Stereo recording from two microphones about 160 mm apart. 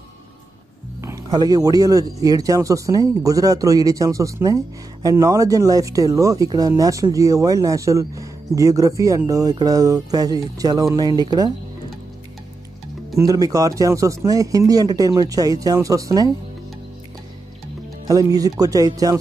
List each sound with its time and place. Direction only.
1.0 s a man's voice: 20° right (ahead or behind)
13.2 s a man's voice: 20° right (ahead or behind)
18.0 s a man's voice: 20° right (ahead or behind)